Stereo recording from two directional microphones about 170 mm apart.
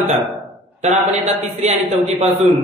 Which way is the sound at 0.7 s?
40° right (ahead or behind).